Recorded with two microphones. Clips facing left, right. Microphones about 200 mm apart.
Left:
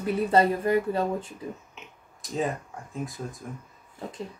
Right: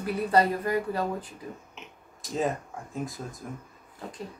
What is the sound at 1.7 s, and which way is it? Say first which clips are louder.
Tick-tock: right 1 dB; centre (ahead or behind).